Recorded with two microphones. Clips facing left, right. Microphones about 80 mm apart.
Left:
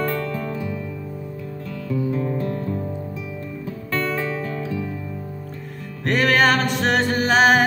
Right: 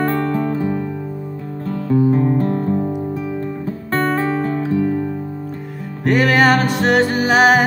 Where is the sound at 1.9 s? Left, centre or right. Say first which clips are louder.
Right 8 dB; right.